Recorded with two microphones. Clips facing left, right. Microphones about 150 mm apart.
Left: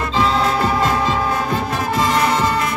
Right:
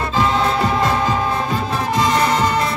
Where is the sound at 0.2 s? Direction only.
20° right (ahead or behind).